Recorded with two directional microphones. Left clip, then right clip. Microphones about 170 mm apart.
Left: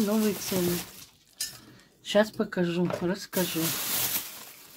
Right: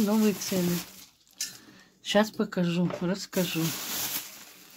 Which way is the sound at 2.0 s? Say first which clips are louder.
Left 1 dB; 40° right (ahead or behind).